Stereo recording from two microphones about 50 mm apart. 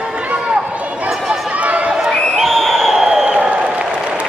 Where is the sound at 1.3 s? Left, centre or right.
Right.